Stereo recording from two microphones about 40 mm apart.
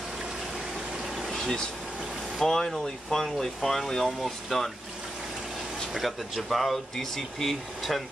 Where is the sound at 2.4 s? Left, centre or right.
Centre.